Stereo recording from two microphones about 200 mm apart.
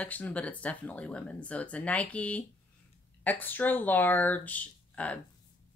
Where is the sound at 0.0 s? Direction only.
5° left (ahead or behind).